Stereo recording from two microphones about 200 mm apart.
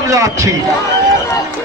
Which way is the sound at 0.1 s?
15° right (ahead or behind).